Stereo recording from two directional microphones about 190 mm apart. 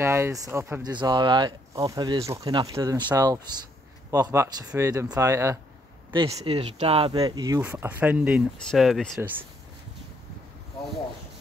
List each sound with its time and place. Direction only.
0.0 s speech: 15° right (ahead or behind)
6.1 s speech: 25° right (ahead or behind); by 9.2 s centre (ahead or behind)